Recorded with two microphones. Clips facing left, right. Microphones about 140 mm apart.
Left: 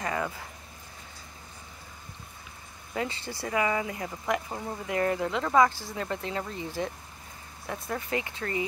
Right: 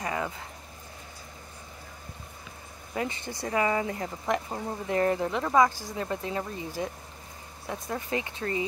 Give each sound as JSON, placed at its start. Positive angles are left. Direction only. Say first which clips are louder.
{"t": 0.0, "sound": "speech", "louder": "even", "side_deg": -20}
{"t": 2.9, "sound": "speech", "louder": "even", "side_deg": -20}
{"t": 3.4, "sound": "speech", "louder": "right 1 dB", "side_deg": -30}